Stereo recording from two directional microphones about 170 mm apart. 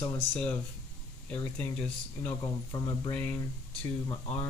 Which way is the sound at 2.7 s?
20° left (ahead or behind).